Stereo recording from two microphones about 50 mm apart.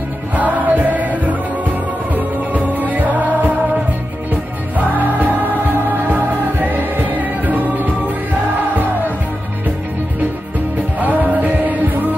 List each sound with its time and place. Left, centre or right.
0.4 s music: right
11.0 s music: right